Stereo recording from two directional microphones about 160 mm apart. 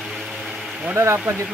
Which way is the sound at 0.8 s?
15° right (ahead or behind).